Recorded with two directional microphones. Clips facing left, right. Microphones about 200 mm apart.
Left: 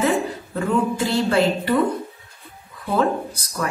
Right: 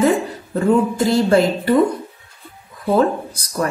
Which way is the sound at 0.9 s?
40° right (ahead or behind).